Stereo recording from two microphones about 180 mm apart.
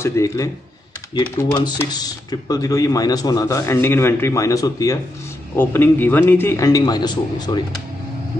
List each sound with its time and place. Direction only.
0.0 s speech: 15° left (ahead or behind)